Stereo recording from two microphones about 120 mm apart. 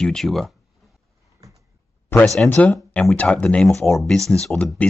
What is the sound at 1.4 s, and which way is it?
Cupboard open or close, 25° right (ahead or behind).